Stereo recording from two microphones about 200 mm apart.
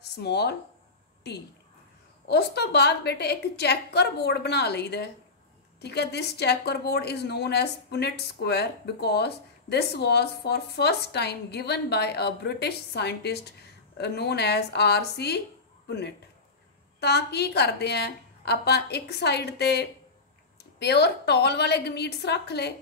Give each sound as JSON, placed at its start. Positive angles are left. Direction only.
{"t": 0.2, "sound": "a woman's voice", "side_deg": 55}
{"t": 17.0, "sound": "a woman's voice", "side_deg": 55}